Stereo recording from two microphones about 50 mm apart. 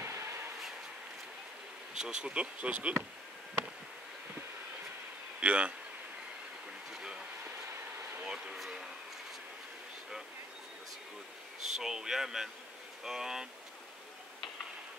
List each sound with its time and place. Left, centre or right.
0.0 s vehicle: right
2.0 s speech: centre
5.4 s speech: right
6.9 s a sound: centre
8.5 s a sound: centre
11.6 s speech: centre